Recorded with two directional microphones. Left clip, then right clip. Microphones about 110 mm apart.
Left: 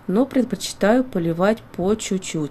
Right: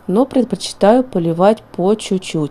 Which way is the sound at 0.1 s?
30° right (ahead or behind).